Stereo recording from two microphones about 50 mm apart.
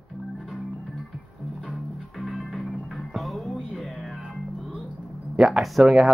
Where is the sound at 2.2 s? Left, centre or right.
Centre.